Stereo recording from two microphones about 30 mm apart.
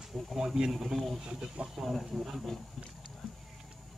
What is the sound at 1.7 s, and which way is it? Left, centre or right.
Speech, centre.